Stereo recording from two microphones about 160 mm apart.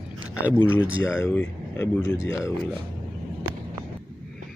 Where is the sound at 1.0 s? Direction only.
15° left (ahead or behind).